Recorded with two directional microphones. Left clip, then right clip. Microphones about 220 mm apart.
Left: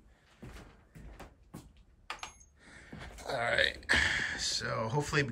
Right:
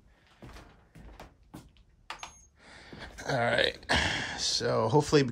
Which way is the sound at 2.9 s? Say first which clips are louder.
Right 5 dB; 50° right (ahead or behind).